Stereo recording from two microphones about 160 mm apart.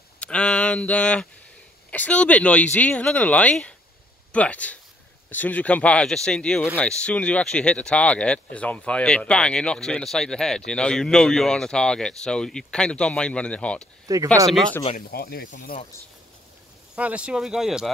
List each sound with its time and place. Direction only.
0.2 s speech: 5° left (ahead or behind)
14.0 s speech: 20° right (ahead or behind)
15.0 s speech: 70° left (ahead or behind)
15.5 s speech: 60° left (ahead or behind)
16.9 s speech: 5° right (ahead or behind)